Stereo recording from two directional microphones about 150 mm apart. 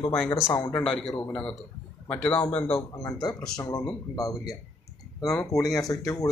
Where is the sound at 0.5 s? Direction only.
15° left (ahead or behind).